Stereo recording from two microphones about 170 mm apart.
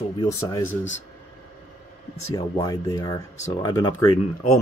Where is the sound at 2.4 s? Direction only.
20° left (ahead or behind).